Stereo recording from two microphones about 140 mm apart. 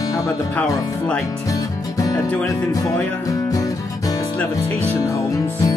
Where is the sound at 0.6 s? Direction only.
10° left (ahead or behind).